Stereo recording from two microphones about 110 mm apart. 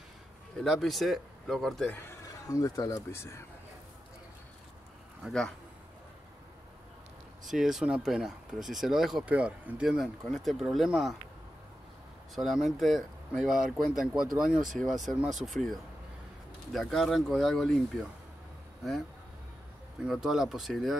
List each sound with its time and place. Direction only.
0.7 s speech: centre (ahead or behind)
1.9 s speech: 20° left (ahead or behind)
2.2 s speech: 30° left (ahead or behind)
5.2 s speech: 5° left (ahead or behind)
7.4 s speech: 5° right (ahead or behind)
12.4 s speech: 5° right (ahead or behind)
20.1 s speech: 5° right (ahead or behind)